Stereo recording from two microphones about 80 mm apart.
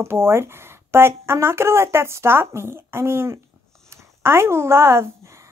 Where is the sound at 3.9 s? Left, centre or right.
Right.